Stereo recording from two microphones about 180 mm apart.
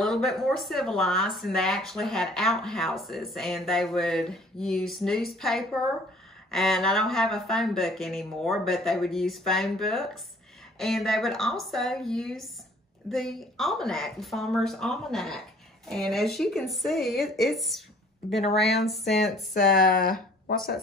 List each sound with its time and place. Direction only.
0.0 s speech: 5° left (ahead or behind)
19.5 s speech: 50° left (ahead or behind)